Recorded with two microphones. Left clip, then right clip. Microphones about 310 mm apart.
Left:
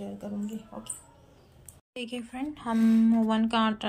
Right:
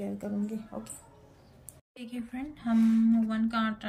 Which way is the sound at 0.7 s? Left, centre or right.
Right.